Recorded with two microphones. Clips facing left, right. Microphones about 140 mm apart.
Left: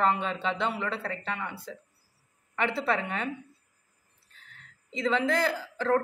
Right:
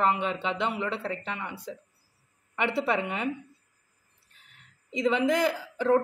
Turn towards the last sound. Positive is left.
turn(degrees=-20)  # may be behind; listen again after turning